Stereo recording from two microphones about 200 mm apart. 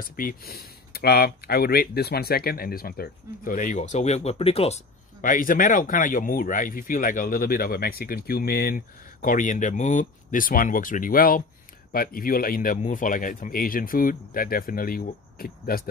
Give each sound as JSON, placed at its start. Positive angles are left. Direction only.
{"t": 0.1, "sound": "speech", "side_deg": 45}